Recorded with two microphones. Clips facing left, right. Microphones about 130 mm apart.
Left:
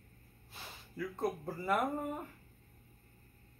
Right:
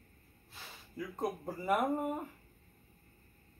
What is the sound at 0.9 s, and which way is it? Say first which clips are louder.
Speech: left 1 dB; 15° right (ahead or behind).